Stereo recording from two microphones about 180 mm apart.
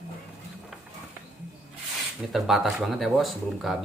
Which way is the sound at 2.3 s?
Centre (ahead or behind).